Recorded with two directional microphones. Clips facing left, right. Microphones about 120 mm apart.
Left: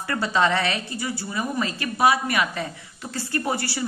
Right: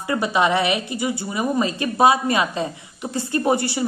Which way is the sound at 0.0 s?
15° right (ahead or behind).